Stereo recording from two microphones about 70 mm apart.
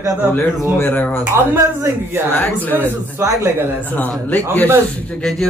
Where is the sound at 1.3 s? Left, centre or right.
Right.